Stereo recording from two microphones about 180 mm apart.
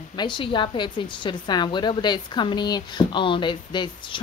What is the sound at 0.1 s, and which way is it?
A woman's voice, 25° left (ahead or behind).